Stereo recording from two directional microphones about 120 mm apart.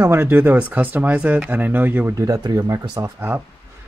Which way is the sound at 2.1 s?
30° right (ahead or behind).